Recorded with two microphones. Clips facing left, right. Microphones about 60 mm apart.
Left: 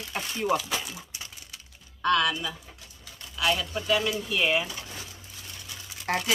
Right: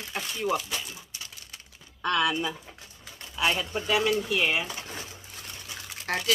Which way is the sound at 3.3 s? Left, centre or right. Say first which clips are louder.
Even; right.